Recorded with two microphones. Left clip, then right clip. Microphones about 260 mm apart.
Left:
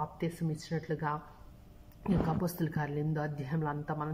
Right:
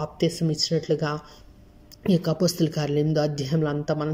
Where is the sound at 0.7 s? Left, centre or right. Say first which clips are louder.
Right 8 dB; centre.